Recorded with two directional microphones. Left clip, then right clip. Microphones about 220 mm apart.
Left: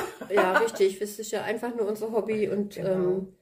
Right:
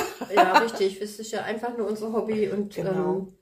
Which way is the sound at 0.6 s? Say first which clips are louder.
Left 1 dB; 35° left (ahead or behind).